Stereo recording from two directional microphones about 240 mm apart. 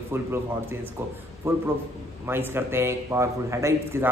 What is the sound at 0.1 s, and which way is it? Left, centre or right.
Speech, centre.